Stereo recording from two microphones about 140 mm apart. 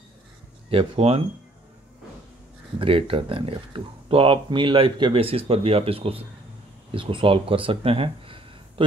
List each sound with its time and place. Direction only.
0.7 s speech: 45° right (ahead or behind)
2.8 s speech: 40° right (ahead or behind)